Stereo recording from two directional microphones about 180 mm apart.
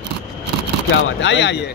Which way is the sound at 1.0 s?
90° left.